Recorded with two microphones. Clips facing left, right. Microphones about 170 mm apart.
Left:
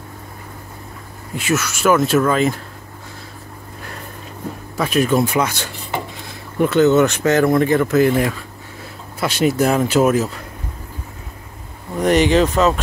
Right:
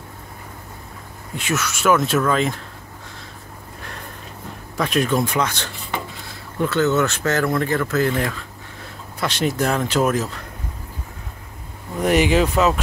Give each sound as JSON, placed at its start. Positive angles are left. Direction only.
{"t": 1.3, "sound": "speech", "side_deg": 0}
{"t": 4.7, "sound": "speech", "side_deg": 5}
{"t": 12.0, "sound": "speech", "side_deg": -5}